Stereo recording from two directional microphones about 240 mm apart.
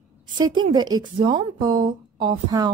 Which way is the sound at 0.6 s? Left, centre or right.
Centre.